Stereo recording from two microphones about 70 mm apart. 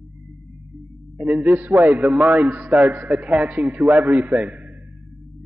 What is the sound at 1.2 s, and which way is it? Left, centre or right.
A man's voice, right.